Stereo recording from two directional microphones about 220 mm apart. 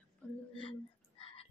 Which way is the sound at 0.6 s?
25° left (ahead or behind).